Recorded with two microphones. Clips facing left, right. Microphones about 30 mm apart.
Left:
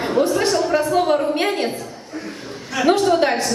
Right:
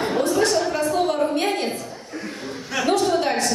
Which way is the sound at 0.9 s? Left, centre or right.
Left.